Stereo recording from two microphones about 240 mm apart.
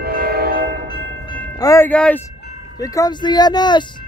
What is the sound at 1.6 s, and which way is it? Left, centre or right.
Speech, centre.